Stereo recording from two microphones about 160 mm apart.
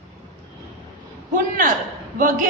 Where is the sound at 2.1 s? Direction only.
60° right (ahead or behind).